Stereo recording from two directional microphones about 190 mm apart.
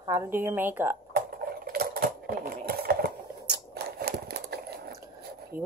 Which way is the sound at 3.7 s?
55° right (ahead or behind).